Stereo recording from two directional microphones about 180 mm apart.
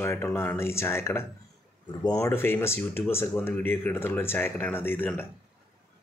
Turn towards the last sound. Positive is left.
turn(degrees=10)  # may be behind; listen again after turning